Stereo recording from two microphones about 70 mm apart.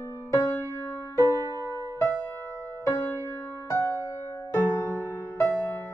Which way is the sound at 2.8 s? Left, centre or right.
Left.